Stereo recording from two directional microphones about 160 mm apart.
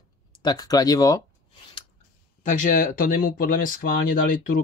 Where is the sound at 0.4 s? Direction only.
25° left (ahead or behind).